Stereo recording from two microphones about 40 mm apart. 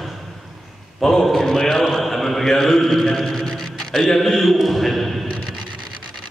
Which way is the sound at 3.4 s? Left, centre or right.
Centre.